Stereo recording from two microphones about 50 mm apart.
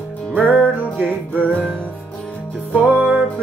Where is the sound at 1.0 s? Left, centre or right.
Left.